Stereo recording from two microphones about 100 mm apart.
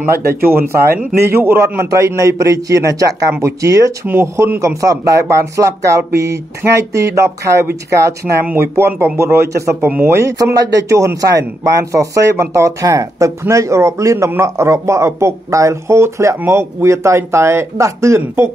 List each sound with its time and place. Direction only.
0.1 s speech: 25° right (ahead or behind)